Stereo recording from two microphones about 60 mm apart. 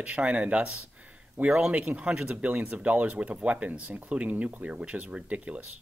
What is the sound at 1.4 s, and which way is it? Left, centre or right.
Speech, right.